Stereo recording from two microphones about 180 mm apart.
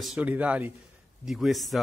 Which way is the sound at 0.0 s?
5° right (ahead or behind).